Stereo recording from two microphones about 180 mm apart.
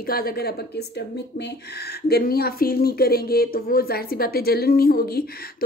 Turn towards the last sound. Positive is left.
turn(degrees=55)  # may be behind; listen again after turning